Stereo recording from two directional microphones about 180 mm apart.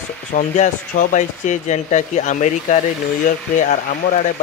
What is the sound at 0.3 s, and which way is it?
A man's voice, 50° left (ahead or behind).